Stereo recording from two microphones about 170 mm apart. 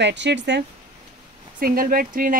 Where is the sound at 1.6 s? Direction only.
60° right (ahead or behind).